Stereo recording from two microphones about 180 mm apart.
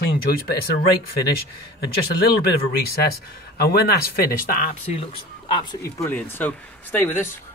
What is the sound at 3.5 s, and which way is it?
Speech, 60° left (ahead or behind).